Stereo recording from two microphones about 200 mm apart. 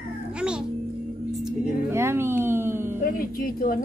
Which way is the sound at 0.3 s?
5° right (ahead or behind).